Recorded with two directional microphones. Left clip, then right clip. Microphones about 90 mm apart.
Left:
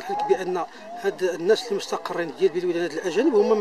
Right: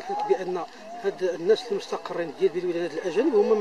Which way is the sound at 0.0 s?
35° left (ahead or behind).